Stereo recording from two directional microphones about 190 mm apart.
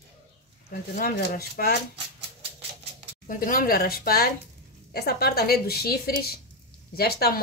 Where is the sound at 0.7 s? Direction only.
45° left (ahead or behind).